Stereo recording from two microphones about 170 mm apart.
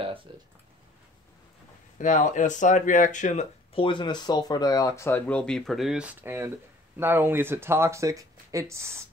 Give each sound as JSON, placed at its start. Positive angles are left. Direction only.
{"t": 0.0, "sound": "a sound", "side_deg": -30}
{"t": 2.0, "sound": "speech", "side_deg": 50}
{"t": 3.8, "sound": "speech", "side_deg": 30}